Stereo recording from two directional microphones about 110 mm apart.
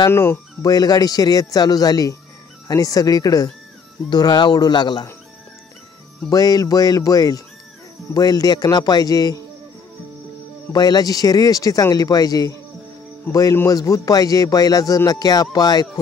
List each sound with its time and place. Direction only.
0.1 s speech: 20° left (ahead or behind)
0.7 s speech: 35° left (ahead or behind)
6.3 s speech: 35° left (ahead or behind)
10.7 s speech: 35° left (ahead or behind)